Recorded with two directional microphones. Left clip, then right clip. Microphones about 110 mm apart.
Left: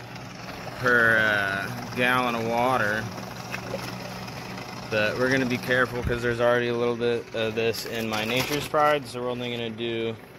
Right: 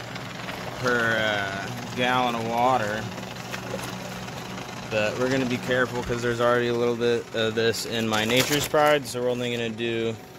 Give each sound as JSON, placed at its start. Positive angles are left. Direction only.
{"t": 0.8, "sound": "speech", "side_deg": 0}
{"t": 4.9, "sound": "speech", "side_deg": 5}
{"t": 6.2, "sound": "speech", "side_deg": -5}
{"t": 6.6, "sound": "speech", "side_deg": -20}
{"t": 7.4, "sound": "speech", "side_deg": -50}
{"t": 8.1, "sound": "speech", "side_deg": -70}
{"t": 8.7, "sound": "speech", "side_deg": -40}